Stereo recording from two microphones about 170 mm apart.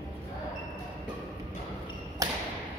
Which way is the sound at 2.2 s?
20° right (ahead or behind).